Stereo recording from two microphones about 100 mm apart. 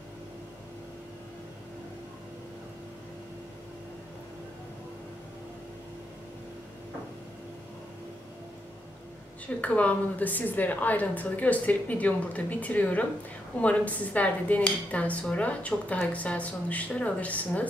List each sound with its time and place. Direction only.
9.6 s speech: 15° left (ahead or behind)